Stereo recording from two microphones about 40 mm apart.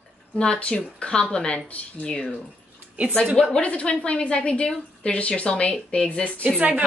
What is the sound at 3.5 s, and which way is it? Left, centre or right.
A woman's voice, left.